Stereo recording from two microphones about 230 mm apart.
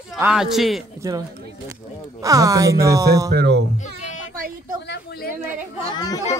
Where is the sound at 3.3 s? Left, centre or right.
Right.